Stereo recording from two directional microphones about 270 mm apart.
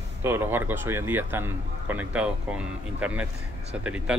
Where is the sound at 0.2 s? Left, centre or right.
Centre.